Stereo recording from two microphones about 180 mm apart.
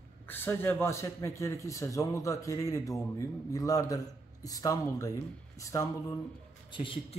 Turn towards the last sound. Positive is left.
turn(degrees=30)  # may be behind; listen again after turning